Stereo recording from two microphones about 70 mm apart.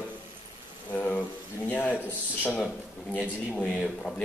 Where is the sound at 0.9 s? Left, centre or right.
Left.